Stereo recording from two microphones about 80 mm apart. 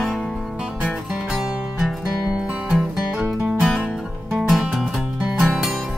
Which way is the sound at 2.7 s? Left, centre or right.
Centre.